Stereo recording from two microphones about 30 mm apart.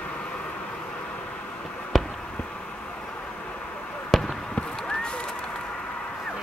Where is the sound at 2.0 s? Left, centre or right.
Centre.